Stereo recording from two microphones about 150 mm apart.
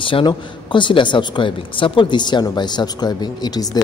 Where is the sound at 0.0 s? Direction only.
35° left (ahead or behind).